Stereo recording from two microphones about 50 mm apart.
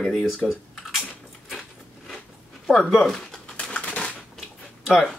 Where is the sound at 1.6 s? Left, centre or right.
Centre.